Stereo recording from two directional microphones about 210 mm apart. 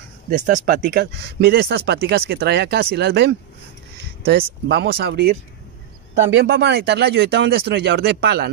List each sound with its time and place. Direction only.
0.3 s speech: 40° right (ahead or behind)
6.3 s speech: 55° right (ahead or behind)